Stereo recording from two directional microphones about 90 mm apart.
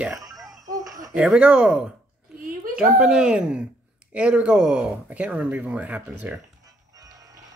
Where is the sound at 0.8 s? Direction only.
45° right (ahead or behind).